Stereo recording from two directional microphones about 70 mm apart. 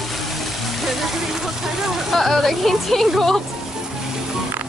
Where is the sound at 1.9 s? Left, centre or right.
Centre.